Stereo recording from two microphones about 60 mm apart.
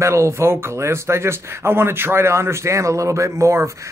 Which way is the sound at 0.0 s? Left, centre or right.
Right.